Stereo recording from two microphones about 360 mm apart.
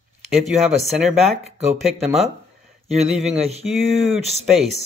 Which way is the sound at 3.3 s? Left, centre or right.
Centre.